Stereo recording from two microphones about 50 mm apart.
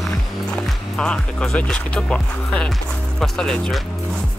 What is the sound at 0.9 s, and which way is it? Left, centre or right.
Speech, centre.